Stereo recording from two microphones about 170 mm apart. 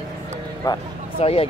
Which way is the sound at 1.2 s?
35° left (ahead or behind).